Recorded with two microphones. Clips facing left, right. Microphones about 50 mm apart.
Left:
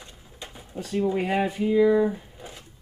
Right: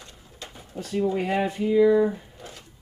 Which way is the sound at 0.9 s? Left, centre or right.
Centre.